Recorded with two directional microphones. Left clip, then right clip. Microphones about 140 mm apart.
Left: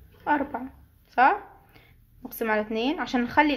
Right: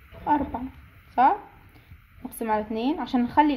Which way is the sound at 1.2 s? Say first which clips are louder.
Even; 25° right (ahead or behind).